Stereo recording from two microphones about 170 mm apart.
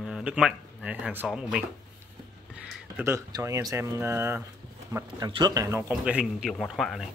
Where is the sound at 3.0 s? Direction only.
15° right (ahead or behind).